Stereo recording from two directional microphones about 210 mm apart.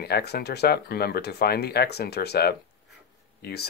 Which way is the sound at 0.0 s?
50° left (ahead or behind).